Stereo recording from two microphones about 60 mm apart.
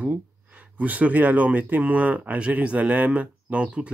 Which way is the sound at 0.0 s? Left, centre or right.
Right.